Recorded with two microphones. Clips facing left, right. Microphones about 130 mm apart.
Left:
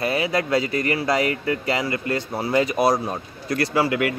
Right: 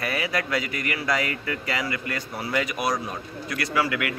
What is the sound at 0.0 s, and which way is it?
Speech, 25° left (ahead or behind).